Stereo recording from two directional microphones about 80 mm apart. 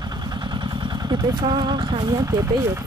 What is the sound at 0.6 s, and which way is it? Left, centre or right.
Vehicle, right.